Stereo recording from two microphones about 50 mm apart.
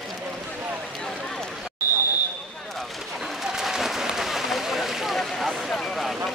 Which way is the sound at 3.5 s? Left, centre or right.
Centre.